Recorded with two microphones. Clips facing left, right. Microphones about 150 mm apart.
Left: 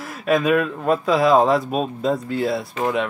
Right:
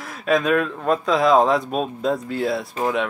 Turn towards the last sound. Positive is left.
turn(degrees=0)  # may be behind; listen again after turning